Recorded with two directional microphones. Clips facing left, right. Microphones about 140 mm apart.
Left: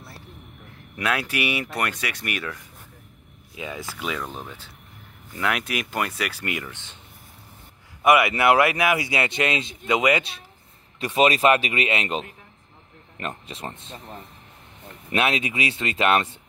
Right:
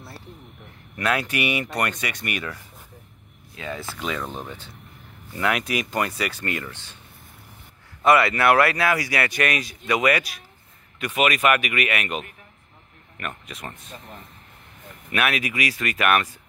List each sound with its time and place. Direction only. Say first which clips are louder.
0.9 s speech: right 1 dB; 5° left (ahead or behind)
3.5 s speech: right 1 dB; 10° left (ahead or behind)
8.0 s speech: even; 15° left (ahead or behind)